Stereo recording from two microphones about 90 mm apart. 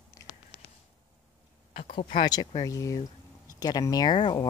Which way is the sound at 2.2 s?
50° left (ahead or behind).